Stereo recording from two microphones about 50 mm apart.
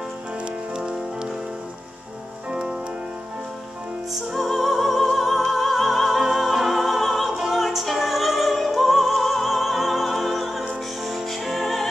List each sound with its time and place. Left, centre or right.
0.4 s music: centre
2.5 s music: centre
4.1 s music: centre